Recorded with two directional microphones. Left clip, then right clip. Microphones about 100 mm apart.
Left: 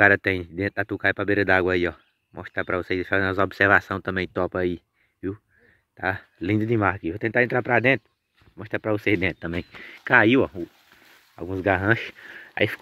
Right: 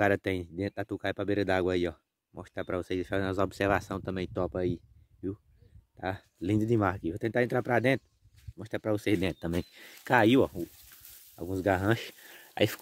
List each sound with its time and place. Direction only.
0.0 s speech: 35° right (ahead or behind)
0.6 s speech: 25° right (ahead or behind)
4.1 s speech: 20° right (ahead or behind)
5.9 s speech: 25° right (ahead or behind)
6.6 s speech: 65° right (ahead or behind); by 10.5 s 90° right
11.5 s speech: 65° right (ahead or behind)